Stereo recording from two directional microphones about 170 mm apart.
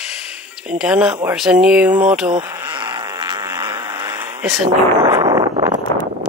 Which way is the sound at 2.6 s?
25° right (ahead or behind).